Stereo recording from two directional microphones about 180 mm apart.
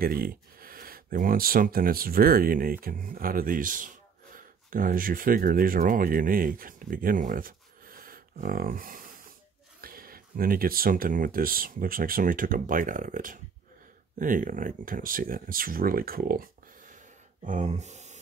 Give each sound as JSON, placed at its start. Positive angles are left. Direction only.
{"t": 0.0, "sound": "speech", "side_deg": -55}